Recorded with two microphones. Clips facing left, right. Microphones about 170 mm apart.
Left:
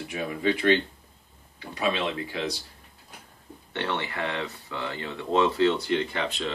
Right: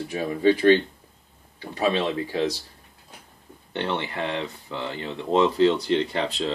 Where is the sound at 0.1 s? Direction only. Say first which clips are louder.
Right 6 dB; 35° right (ahead or behind).